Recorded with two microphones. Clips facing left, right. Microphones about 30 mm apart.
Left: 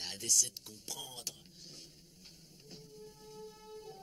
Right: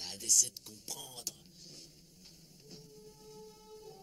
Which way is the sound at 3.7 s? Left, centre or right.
Left.